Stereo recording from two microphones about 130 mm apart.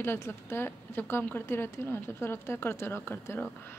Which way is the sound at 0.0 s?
20° left (ahead or behind).